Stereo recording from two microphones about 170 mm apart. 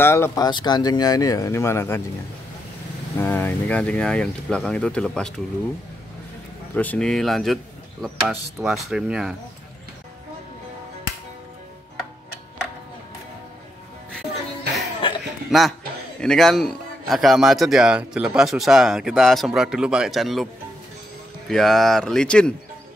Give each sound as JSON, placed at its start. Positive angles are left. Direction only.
{"t": 0.0, "sound": "speech", "side_deg": 15}
{"t": 0.5, "sound": "speech", "side_deg": 25}
{"t": 3.2, "sound": "a man's voice", "side_deg": 10}
{"t": 6.7, "sound": "a man's voice", "side_deg": 10}
{"t": 15.0, "sound": "a sound", "side_deg": 30}
{"t": 15.5, "sound": "a man's voice", "side_deg": -5}
{"t": 21.5, "sound": "a man's voice", "side_deg": 5}